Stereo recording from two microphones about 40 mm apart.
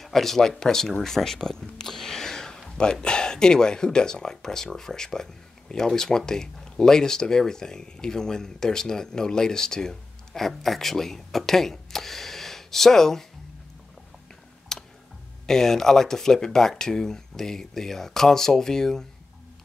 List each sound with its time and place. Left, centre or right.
0.0 s speech: centre
14.7 s tick: centre
15.4 s speech: centre